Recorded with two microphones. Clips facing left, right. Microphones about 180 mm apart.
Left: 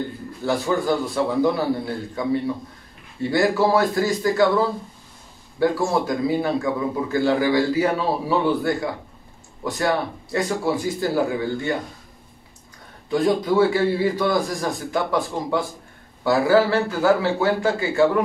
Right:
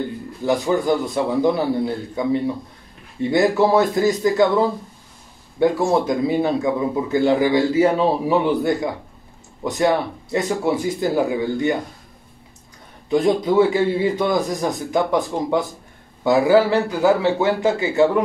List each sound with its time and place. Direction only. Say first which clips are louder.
0.4 s a man's voice: right 3 dB; 15° right (ahead or behind)
13.1 s a man's voice: right 2 dB; 20° right (ahead or behind)